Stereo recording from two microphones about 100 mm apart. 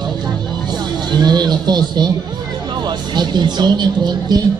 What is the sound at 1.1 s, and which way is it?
Speech, 45° right (ahead or behind).